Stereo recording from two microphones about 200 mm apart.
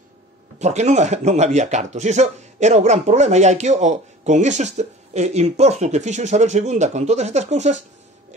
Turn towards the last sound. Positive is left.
turn(degrees=-35)  # may be behind; listen again after turning